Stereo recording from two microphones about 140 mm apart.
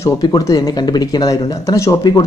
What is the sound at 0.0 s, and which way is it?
Speech, 25° left (ahead or behind).